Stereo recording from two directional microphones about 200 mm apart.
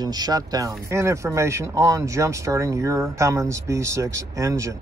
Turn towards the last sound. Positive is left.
turn(degrees=-15)  # may be behind; listen again after turning